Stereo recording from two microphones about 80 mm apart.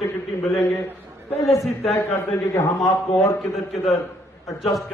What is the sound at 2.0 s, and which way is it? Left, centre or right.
Speech, left.